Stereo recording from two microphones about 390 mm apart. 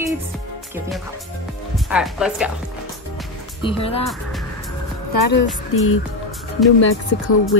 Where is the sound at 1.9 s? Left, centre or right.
Centre.